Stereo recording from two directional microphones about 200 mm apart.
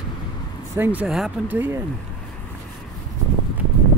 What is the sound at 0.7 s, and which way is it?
Speech, 10° right (ahead or behind).